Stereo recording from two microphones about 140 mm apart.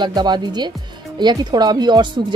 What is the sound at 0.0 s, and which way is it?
Speech, 30° right (ahead or behind).